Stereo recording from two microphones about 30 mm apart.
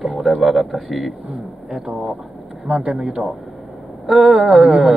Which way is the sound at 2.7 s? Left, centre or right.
Right.